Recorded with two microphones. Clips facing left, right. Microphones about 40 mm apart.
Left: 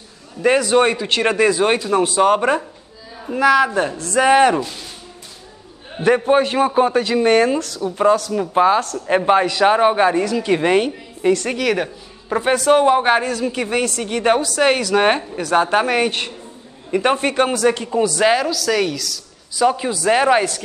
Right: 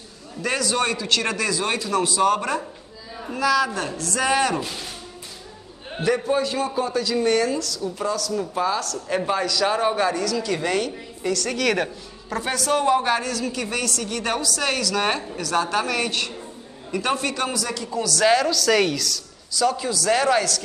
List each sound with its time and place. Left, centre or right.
0.4 s a man's voice: left
6.0 s a man's voice: left
11.5 s a woman's voice: centre
12.3 s a man's voice: left
18.0 s a man's voice: left
18.4 s a woman's voice: centre
19.5 s a man's voice: left